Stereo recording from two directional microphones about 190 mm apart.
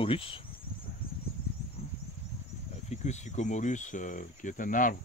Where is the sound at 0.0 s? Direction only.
30° left (ahead or behind).